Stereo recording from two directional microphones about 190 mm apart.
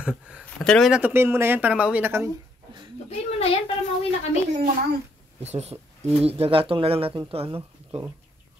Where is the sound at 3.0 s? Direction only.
35° left (ahead or behind).